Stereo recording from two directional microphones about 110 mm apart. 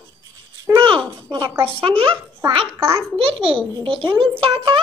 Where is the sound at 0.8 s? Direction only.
50° right (ahead or behind).